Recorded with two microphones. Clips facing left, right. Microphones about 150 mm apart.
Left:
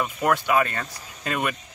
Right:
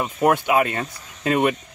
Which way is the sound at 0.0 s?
20° right (ahead or behind).